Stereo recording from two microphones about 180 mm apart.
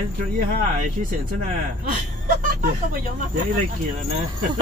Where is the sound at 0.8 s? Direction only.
45° right (ahead or behind).